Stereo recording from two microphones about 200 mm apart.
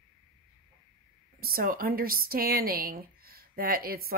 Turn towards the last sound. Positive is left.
turn(degrees=-50)  # may be behind; listen again after turning